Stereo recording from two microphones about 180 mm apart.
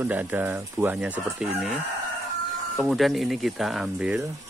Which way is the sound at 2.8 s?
Centre (ahead or behind).